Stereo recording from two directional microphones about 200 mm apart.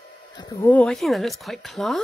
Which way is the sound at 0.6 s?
5° left (ahead or behind).